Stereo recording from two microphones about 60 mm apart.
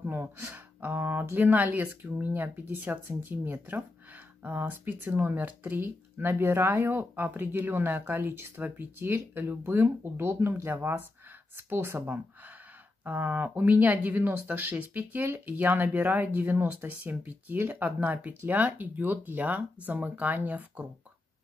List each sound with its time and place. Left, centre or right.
0.0 s gasp: right
0.5 s speech: right